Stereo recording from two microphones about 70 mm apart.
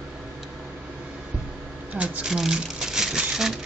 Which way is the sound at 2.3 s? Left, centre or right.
Centre.